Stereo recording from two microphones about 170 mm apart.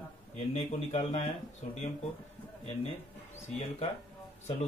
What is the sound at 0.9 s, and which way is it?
Speech, 35° left (ahead or behind).